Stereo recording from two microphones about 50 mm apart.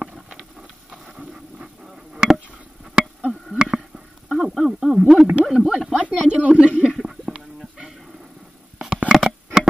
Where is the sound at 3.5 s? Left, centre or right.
Centre.